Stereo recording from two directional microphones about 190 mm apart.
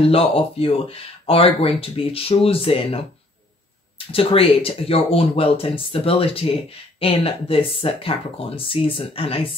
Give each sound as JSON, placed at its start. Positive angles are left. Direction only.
{"t": 0.0, "sound": "speech", "side_deg": 30}
{"t": 4.1, "sound": "speech", "side_deg": 30}